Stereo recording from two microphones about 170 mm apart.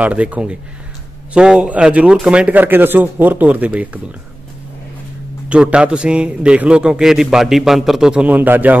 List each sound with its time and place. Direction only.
0.0 s speech: 10° right (ahead or behind)
5.5 s a man's voice: 5° right (ahead or behind)